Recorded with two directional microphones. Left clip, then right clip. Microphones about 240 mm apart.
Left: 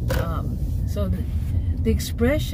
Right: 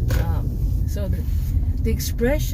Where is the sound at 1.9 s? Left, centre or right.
Left.